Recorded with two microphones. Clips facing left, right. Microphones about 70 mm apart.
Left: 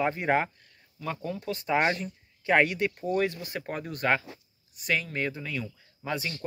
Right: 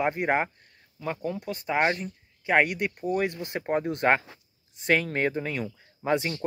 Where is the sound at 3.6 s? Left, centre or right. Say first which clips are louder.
Right 6 dB; right.